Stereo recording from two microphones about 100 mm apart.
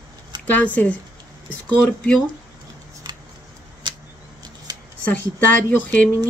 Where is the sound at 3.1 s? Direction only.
45° right (ahead or behind).